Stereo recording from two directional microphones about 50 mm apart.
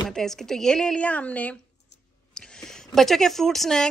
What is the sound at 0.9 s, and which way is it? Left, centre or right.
Speech, left.